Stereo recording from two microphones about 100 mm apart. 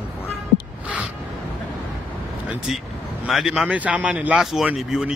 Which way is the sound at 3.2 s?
5° right (ahead or behind).